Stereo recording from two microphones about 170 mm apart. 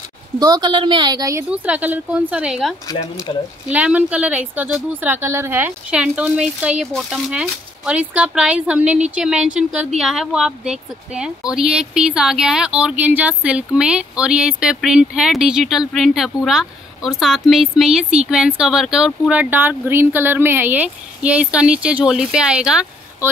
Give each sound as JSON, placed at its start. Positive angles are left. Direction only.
{"t": 0.4, "sound": "a woman's voice", "side_deg": -25}
{"t": 1.5, "sound": "speech", "side_deg": -10}